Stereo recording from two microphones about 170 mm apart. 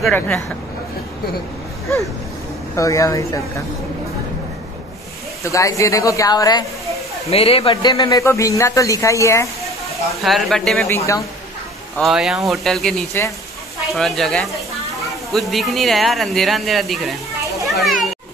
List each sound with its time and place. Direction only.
0.0 s speech: 10° left (ahead or behind)
2.7 s a man's voice: 20° left (ahead or behind)
5.4 s a man's voice: 20° left (ahead or behind)
7.2 s a man's voice: 35° left (ahead or behind); by 9.5 s 15° left (ahead or behind)
10.2 s speech: centre (ahead or behind)
10.9 s speech: 20° left (ahead or behind)
12.0 s speech: centre (ahead or behind)
17.6 s children playing: centre (ahead or behind)